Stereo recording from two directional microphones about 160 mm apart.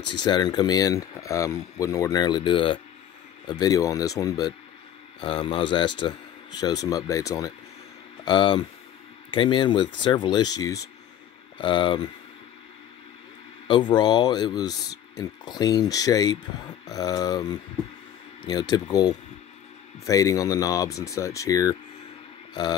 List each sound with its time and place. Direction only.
0.2 s speech: 25° left (ahead or behind)
13.7 s speech: 30° left (ahead or behind)